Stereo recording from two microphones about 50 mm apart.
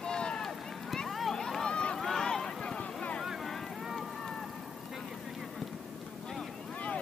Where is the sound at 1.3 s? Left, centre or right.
Centre.